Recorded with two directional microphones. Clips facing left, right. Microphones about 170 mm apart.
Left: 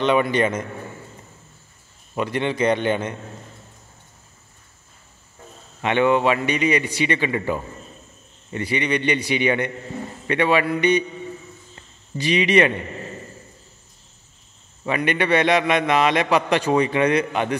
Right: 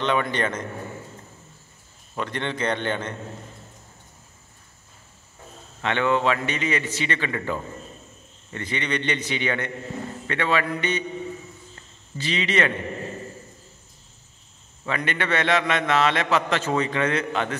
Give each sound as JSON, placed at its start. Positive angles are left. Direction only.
{"t": 0.0, "sound": "a man's voice", "side_deg": 10}
{"t": 2.1, "sound": "a man's voice", "side_deg": 10}
{"t": 5.8, "sound": "a man's voice", "side_deg": 15}
{"t": 12.2, "sound": "a man's voice", "side_deg": 15}
{"t": 14.9, "sound": "a man's voice", "side_deg": 15}